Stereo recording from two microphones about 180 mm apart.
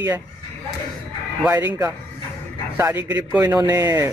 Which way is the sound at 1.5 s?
10° right (ahead or behind).